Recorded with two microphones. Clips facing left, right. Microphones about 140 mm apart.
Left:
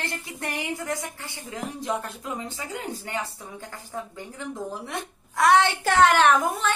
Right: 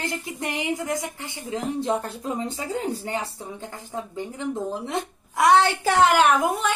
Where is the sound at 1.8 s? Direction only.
30° right (ahead or behind).